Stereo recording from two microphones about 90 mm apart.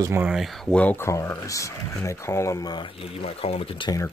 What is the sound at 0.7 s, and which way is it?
Speech, 15° left (ahead or behind).